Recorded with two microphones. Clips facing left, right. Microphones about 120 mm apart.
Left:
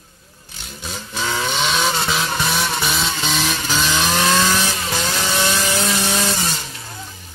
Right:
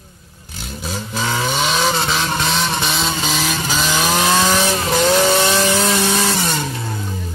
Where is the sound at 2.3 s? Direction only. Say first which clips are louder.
Right 2 dB; 20° right (ahead or behind).